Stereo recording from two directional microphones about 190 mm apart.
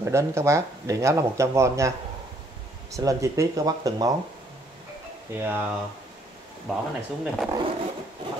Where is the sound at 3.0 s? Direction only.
15° right (ahead or behind).